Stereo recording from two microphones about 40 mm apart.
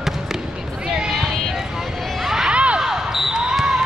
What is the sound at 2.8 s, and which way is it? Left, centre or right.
Basketball bounce, centre.